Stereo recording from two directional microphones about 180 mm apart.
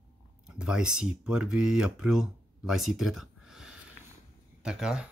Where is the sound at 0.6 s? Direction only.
5° right (ahead or behind).